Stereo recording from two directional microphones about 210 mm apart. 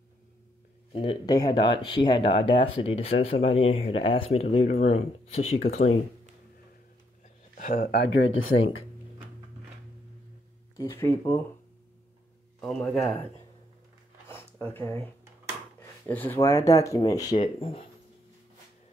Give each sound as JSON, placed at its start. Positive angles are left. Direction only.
{"t": 0.9, "sound": "speech", "side_deg": 20}
{"t": 7.5, "sound": "speech", "side_deg": 40}
{"t": 8.1, "sound": "speech", "side_deg": 75}
{"t": 10.8, "sound": "speech", "side_deg": 10}
{"t": 12.5, "sound": "a man's voice", "side_deg": 5}
{"t": 14.2, "sound": "a sound", "side_deg": 10}
{"t": 16.1, "sound": "speech", "side_deg": 10}
{"t": 17.3, "sound": "speech", "side_deg": 25}